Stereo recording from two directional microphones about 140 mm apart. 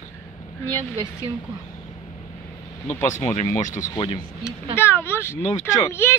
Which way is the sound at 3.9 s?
40° left (ahead or behind).